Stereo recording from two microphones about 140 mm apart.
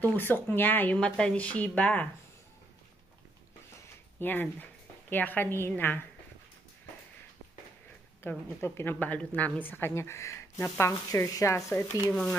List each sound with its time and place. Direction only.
0.0 s speech: 15° left (ahead or behind)
4.2 s speech: 15° left (ahead or behind)
8.5 s speech: 15° left (ahead or behind)